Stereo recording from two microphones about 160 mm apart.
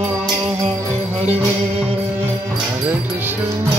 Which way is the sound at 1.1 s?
40° right (ahead or behind).